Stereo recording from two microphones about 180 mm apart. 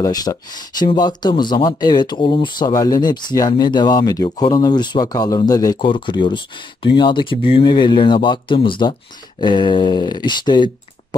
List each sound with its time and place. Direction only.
0.0 s speech: 20° left (ahead or behind)